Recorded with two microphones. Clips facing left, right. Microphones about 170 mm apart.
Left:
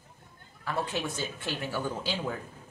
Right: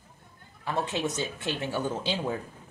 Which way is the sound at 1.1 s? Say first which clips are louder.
Right 3 dB; 20° right (ahead or behind).